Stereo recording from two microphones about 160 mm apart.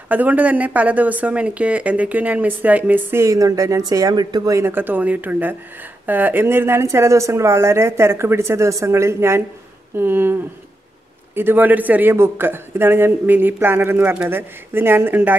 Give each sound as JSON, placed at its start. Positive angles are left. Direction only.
{"t": 0.1, "sound": "speech", "side_deg": -10}